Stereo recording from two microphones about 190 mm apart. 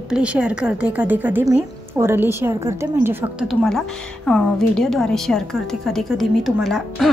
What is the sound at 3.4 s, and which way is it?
A woman's voice, centre (ahead or behind).